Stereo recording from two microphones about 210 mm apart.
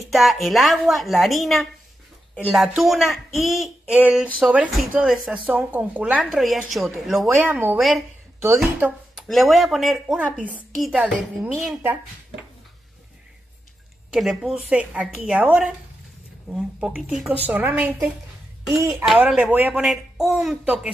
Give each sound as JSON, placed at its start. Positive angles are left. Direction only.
{"t": 0.0, "sound": "a woman's voice", "side_deg": 0}
{"t": 14.1, "sound": "a woman's voice", "side_deg": 0}